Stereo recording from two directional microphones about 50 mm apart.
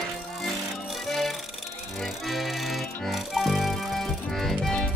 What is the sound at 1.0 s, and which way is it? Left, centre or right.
Music, centre.